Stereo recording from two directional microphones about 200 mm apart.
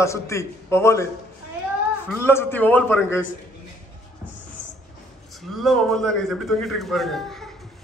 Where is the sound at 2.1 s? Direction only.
10° left (ahead or behind).